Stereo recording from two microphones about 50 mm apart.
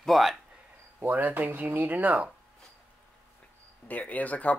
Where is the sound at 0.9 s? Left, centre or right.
Right.